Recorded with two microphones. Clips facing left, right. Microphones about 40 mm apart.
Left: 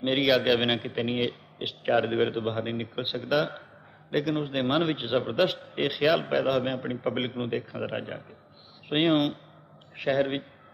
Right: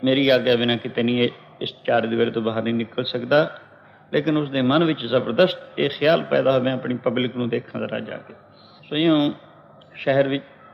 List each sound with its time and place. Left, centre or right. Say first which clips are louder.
0.0 s a man's voice: right 6 dB; centre
0.9 s a man's voice: right 8 dB; right
1.6 s a man's voice: right 4 dB; centre
2.3 s a man's voice: right 7 dB; right
8.8 s speech: right 5 dB; centre
9.9 s a man's voice: right 6 dB; right